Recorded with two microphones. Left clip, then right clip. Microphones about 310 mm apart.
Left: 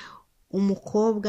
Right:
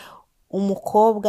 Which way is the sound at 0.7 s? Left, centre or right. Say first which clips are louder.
Right 11 dB; right.